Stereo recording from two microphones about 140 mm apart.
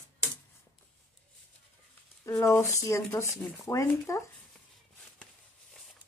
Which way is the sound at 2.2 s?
20° left (ahead or behind).